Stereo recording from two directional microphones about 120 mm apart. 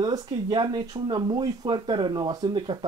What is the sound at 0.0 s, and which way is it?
Speech, 35° right (ahead or behind).